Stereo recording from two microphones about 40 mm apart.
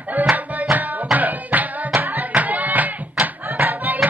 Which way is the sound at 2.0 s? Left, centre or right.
Right.